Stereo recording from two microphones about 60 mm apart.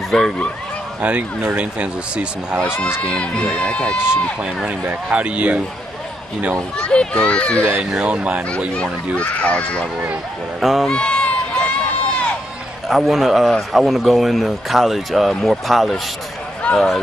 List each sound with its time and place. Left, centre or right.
0.1 s speech: centre
1.0 s speech: right
3.0 s speech: centre
4.6 s speech: right
6.8 s a child's voice: centre
7.8 s speech: centre
9.1 s a child's voice: left
10.6 s speech: centre
10.9 s crowd: centre
12.8 s speech: centre